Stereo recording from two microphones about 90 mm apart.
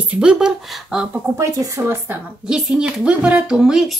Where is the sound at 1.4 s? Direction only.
35° right (ahead or behind).